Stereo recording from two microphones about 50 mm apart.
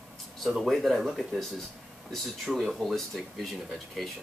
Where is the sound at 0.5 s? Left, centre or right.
Centre.